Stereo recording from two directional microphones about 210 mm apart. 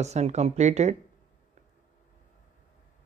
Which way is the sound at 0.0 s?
30° right (ahead or behind).